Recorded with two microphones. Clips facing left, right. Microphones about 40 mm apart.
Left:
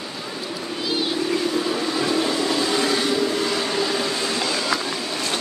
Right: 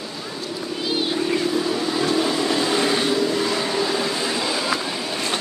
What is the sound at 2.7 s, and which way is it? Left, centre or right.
Vehicle, right.